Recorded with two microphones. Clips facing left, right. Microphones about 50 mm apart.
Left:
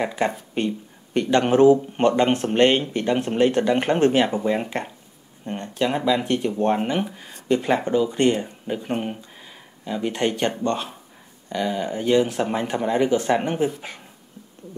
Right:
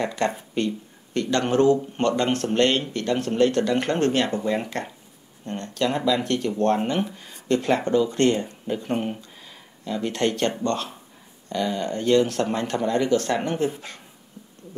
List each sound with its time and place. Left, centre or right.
0.0 s speech: centre